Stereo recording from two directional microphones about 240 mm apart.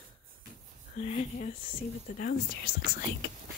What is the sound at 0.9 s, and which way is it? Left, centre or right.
Speech, left.